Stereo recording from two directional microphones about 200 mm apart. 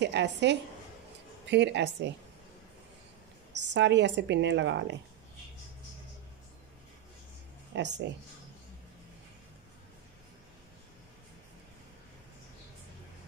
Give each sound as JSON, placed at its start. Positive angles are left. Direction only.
{"t": 0.0, "sound": "speech", "side_deg": -60}
{"t": 3.5, "sound": "speech", "side_deg": -60}
{"t": 7.7, "sound": "speech", "side_deg": -60}